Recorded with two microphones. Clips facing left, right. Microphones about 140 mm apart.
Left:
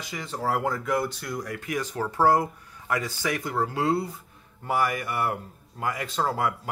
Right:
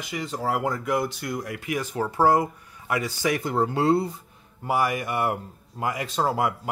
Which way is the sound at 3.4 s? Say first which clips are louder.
Right 2 dB; 25° right (ahead or behind).